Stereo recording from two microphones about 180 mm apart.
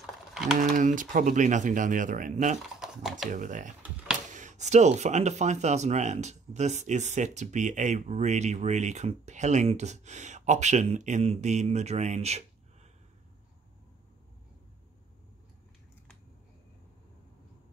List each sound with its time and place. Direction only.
0.0 s typing: 5° right (ahead or behind)
0.6 s speech: 45° right (ahead or behind)
2.8 s typing: centre (ahead or behind)
3.3 s speech: 45° right (ahead or behind)